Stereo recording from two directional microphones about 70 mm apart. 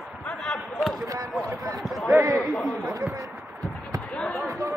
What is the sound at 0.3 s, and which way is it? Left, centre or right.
Basketball bounce, centre.